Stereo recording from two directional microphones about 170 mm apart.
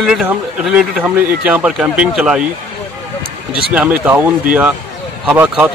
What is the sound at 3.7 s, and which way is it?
Speech, 10° right (ahead or behind).